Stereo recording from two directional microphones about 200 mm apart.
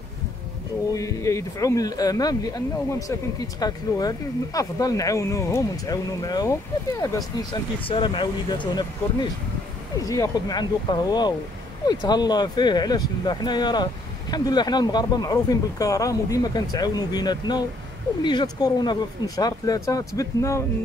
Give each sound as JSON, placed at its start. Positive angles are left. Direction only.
{"t": 0.9, "sound": "speech", "side_deg": 15}